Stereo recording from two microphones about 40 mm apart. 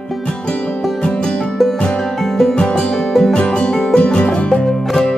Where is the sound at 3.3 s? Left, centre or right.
Left.